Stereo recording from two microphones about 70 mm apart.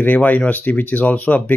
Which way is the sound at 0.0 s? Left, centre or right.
Left.